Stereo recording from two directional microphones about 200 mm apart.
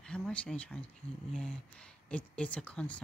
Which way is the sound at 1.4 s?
5° left (ahead or behind).